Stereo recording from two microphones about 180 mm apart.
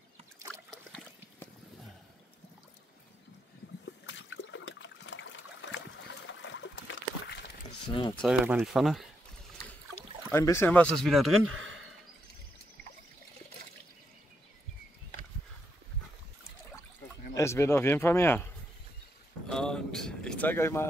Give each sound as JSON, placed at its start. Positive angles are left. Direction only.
{"t": 0.5, "sound": "trickle", "side_deg": 0}
{"t": 4.0, "sound": "trickle", "side_deg": 90}
{"t": 7.9, "sound": "speech", "side_deg": 30}
{"t": 8.3, "sound": "speech", "side_deg": -5}
{"t": 10.3, "sound": "a man's voice", "side_deg": 15}
{"t": 11.5, "sound": "a sound", "side_deg": -90}
{"t": 17.4, "sound": "a man's voice", "side_deg": 15}
{"t": 19.4, "sound": "a sound", "side_deg": 5}